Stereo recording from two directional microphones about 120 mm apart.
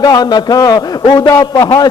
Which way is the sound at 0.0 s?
35° left (ahead or behind).